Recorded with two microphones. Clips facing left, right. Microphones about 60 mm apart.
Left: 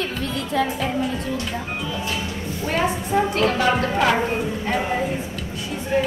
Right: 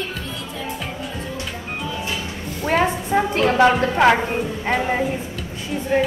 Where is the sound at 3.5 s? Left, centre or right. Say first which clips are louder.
Right 4 dB; right.